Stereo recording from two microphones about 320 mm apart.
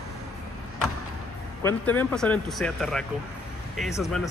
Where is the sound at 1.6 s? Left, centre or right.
Centre.